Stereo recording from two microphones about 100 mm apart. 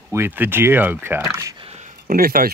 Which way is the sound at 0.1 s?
20° right (ahead or behind).